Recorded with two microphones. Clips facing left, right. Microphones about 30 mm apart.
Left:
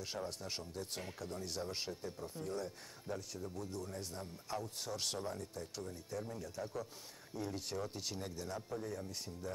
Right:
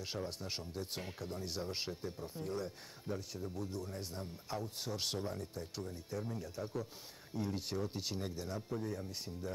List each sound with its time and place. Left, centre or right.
0.0 s speech: centre